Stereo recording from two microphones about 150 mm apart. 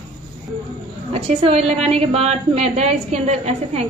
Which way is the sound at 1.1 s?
40° right (ahead or behind).